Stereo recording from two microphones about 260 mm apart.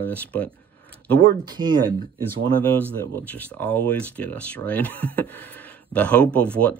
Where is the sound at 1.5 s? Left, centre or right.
Centre.